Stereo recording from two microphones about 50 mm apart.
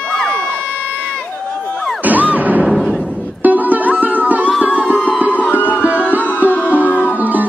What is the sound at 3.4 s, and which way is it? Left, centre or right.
Music, right.